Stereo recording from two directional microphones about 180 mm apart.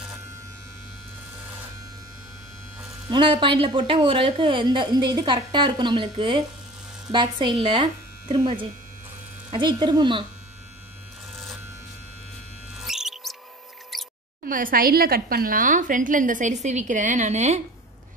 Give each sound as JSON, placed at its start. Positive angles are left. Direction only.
{"t": 3.1, "sound": "a woman's voice", "side_deg": -25}
{"t": 12.8, "sound": "mouse", "side_deg": 0}
{"t": 13.9, "sound": "a sound", "side_deg": 0}
{"t": 14.4, "sound": "a woman's voice", "side_deg": -50}